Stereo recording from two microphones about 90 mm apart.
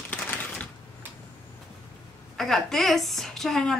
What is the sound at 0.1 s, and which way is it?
Typewriter, 20° left (ahead or behind).